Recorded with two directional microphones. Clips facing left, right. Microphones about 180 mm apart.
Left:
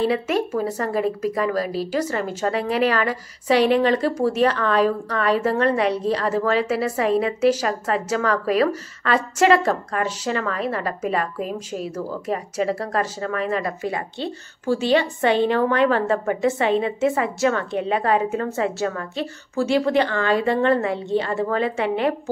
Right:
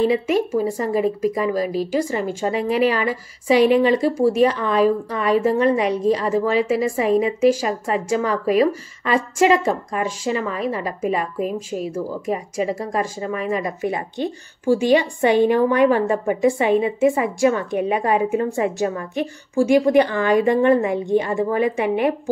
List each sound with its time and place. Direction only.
0.0 s speech: 10° right (ahead or behind)
11.4 s a woman's voice: 45° right (ahead or behind)
11.9 s speech: 10° right (ahead or behind)